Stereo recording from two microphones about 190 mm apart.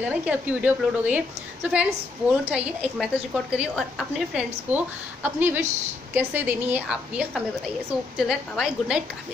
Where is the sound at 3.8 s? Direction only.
5° right (ahead or behind).